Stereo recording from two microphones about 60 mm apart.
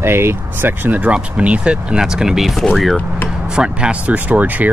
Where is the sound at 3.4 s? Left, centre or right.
Centre.